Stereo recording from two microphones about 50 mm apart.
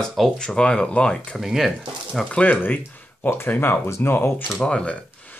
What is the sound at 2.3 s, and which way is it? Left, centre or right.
Speech, left.